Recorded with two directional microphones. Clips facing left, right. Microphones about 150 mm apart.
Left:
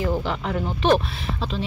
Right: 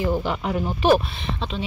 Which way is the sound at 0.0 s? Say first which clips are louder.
Right 1 dB; 15° right (ahead or behind).